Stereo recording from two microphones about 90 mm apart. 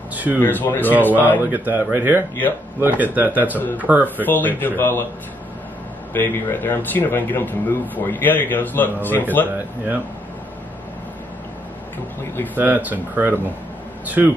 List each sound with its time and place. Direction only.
0.1 s a sound: 20° right (ahead or behind)
0.4 s speech: 25° left (ahead or behind)
1.4 s speech: 20° right (ahead or behind)
3.5 s speech: 20° left (ahead or behind)
3.8 s speech: 20° right (ahead or behind)
4.3 s speech: 20° left (ahead or behind)
6.1 s speech: 25° left (ahead or behind)
12.5 s speech: 20° right (ahead or behind)